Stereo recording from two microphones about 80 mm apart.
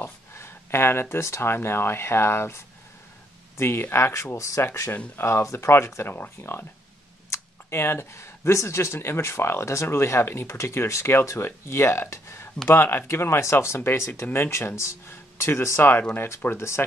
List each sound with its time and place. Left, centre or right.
0.0 s speech: left